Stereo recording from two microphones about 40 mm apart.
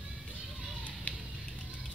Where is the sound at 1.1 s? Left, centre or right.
Left.